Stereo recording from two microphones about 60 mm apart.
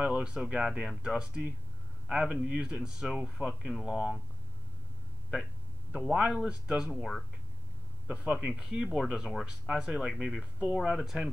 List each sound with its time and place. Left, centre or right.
0.0 s a man's voice: centre
5.9 s speech: centre
6.9 s speech: centre
8.1 s speech: right
8.8 s speech: centre